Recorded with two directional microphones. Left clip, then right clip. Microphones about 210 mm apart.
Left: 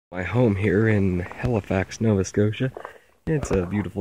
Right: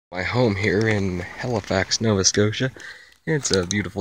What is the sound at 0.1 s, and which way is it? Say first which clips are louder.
Speech: right 2 dB; 5° left (ahead or behind).